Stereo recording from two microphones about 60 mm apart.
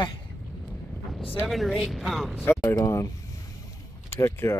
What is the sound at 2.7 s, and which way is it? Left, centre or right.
Speech, left.